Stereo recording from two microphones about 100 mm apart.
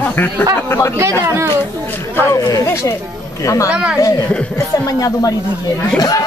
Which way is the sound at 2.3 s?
35° left (ahead or behind).